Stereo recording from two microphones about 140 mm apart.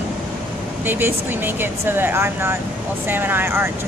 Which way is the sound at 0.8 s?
15° right (ahead or behind).